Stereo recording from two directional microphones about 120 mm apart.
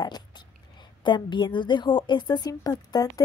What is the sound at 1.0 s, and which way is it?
A woman's voice, 40° left (ahead or behind).